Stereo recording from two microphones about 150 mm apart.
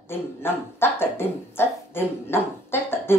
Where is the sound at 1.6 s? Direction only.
15° left (ahead or behind).